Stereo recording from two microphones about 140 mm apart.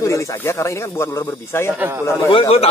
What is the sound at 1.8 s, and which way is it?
Speech, 15° right (ahead or behind).